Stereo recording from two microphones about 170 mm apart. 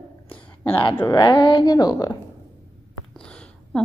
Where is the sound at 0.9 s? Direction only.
20° left (ahead or behind).